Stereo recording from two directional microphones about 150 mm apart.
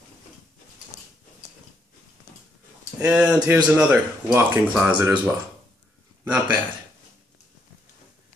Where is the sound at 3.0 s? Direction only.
5° right (ahead or behind).